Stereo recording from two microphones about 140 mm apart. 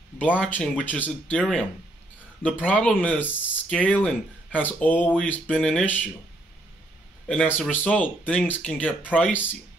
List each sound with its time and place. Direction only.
0.5 s speech: 10° left (ahead or behind)
7.2 s speech: 10° left (ahead or behind)